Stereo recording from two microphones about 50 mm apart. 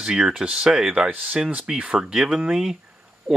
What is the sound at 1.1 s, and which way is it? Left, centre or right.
Speech, right.